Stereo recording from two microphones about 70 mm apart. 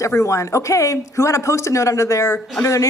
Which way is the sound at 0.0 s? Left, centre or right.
Left.